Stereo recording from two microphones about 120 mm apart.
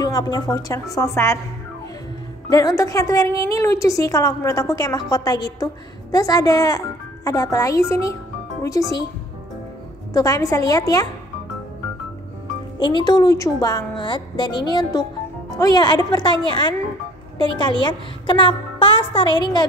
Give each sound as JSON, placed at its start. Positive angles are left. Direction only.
{"t": 0.0, "sound": "a woman's voice", "side_deg": 35}
{"t": 2.5, "sound": "a woman's voice", "side_deg": 30}
{"t": 10.1, "sound": "a woman's voice", "side_deg": 30}
{"t": 12.7, "sound": "a woman's voice", "side_deg": 40}